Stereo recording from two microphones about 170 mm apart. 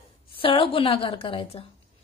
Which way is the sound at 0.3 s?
30° left (ahead or behind).